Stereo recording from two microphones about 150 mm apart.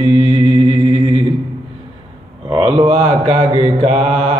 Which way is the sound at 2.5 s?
40° right (ahead or behind).